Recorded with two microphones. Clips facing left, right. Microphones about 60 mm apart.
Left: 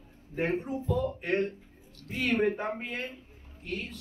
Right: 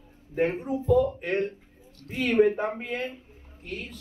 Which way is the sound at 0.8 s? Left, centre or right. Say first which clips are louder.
Right 8 dB; right.